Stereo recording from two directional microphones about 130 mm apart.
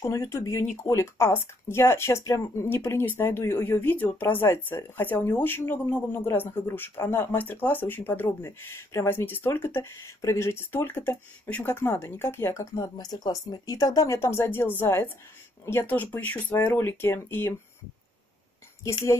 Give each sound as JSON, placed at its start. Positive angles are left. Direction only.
{"t": 0.0, "sound": "speech", "side_deg": 25}
{"t": 18.9, "sound": "speech", "side_deg": 20}